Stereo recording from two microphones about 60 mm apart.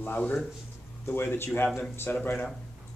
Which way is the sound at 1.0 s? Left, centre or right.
Left.